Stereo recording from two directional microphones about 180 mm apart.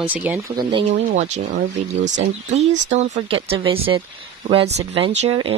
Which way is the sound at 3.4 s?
30° right (ahead or behind).